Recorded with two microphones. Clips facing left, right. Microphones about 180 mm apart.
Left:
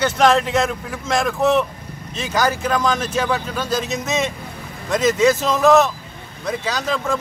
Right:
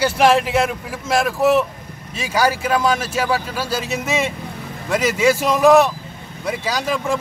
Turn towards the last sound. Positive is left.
turn(degrees=-10)  # may be behind; listen again after turning